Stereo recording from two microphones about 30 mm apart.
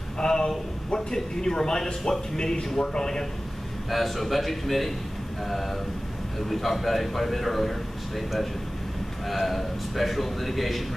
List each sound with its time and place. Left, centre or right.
0.2 s a sound: left
0.9 s a man's voice: centre
3.9 s a man's voice: centre
9.3 s a man's voice: centre